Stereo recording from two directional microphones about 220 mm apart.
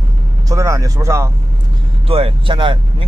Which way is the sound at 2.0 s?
25° right (ahead or behind).